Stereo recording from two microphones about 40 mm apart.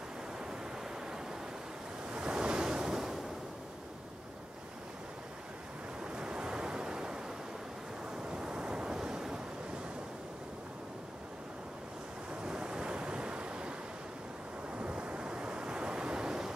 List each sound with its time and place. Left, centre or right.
2.0 s waves: right
6.1 s waves: right
8.3 s waves: right
12.4 s waves: right
14.8 s waves: right